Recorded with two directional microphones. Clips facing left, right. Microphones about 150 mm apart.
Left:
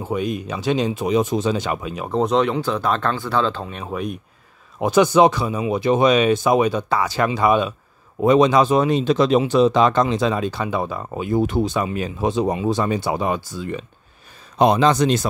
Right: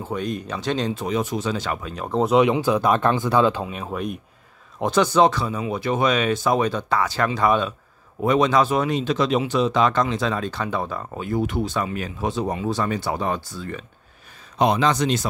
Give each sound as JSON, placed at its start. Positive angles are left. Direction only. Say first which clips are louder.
{"t": 0.0, "sound": "speech", "louder": "left 3 dB", "side_deg": 10}
{"t": 2.0, "sound": "speech", "louder": "right 1 dB", "side_deg": -5}
{"t": 2.4, "sound": "speech", "louder": "right 2 dB", "side_deg": -15}
{"t": 14.6, "sound": "speech", "louder": "left 4 dB", "side_deg": 35}